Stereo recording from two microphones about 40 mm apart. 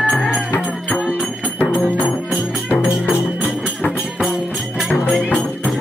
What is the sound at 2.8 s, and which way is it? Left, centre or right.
Music, centre.